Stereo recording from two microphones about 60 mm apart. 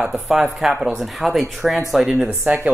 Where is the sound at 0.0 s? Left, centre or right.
Centre.